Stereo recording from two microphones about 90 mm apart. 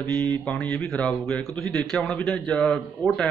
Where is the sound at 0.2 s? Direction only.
20° left (ahead or behind).